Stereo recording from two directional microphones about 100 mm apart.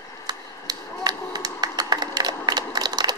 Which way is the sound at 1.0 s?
45° right (ahead or behind).